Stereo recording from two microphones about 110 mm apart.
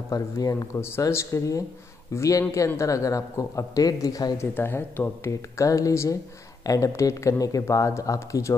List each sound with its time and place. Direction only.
0.1 s speech: 30° left (ahead or behind)
4.4 s speech: 20° left (ahead or behind)